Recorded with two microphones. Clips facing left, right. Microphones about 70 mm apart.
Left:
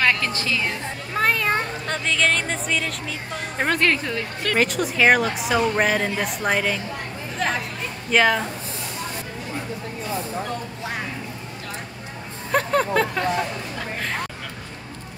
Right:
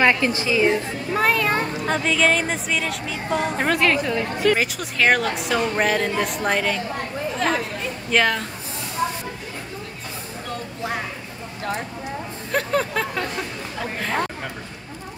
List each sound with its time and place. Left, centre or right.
0.0 s a woman's voice: centre
1.1 s speech: centre
4.9 s speech: centre
12.4 s a sound: centre